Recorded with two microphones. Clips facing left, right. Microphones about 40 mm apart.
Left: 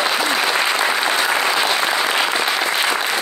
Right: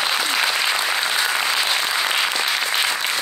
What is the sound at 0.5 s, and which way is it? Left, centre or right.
Applause, left.